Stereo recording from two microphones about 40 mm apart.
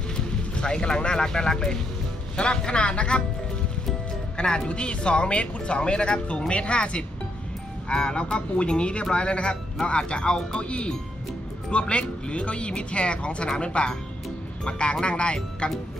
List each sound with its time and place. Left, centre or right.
0.6 s speech: left
4.6 s speech: left